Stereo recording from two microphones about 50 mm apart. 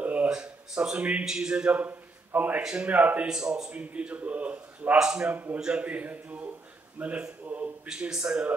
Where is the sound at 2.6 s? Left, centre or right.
Right.